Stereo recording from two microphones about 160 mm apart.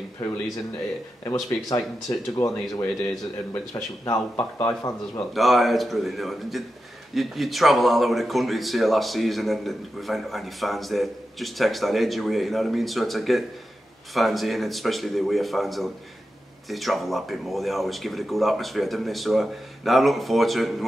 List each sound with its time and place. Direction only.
1.2 s speech: 20° left (ahead or behind)
5.3 s speech: centre (ahead or behind)